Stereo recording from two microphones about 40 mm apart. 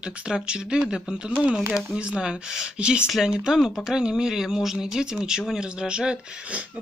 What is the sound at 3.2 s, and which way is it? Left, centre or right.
Speech, centre.